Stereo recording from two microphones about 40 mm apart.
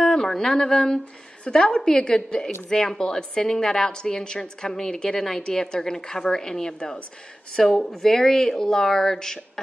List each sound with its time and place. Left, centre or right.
0.0 s a woman's voice: centre